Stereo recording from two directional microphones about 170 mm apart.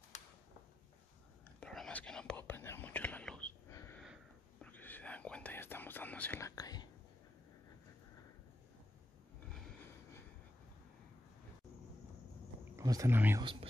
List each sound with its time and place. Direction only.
1.6 s whispering: 5° left (ahead or behind)
3.7 s a sound: 15° left (ahead or behind)
4.0 s a sound: centre (ahead or behind)
4.6 s whispering: 10° left (ahead or behind)
12.7 s speech: 20° right (ahead or behind)
13.4 s speech: 30° right (ahead or behind)